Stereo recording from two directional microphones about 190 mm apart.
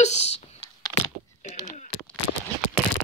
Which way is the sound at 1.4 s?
40° left (ahead or behind).